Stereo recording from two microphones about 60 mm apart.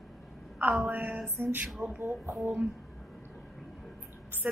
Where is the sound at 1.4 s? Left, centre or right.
Right.